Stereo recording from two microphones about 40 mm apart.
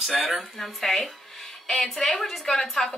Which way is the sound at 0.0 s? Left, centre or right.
Centre.